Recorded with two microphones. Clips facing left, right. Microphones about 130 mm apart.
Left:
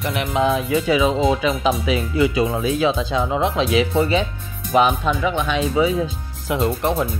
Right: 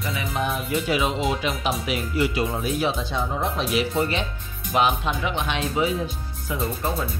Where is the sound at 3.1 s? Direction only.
90° left.